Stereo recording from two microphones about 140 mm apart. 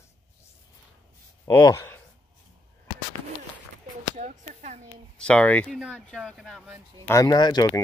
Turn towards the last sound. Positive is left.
turn(degrees=30)  # may be behind; listen again after turning